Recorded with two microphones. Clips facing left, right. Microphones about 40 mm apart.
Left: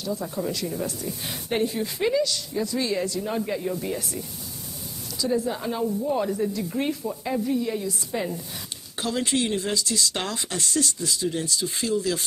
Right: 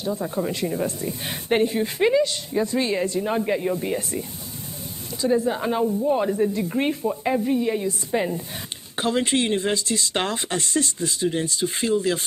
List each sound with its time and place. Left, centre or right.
0.0 s speech: right
5.2 s speech: right